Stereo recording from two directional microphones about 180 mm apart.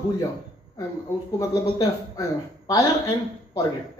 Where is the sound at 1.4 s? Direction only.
20° left (ahead or behind).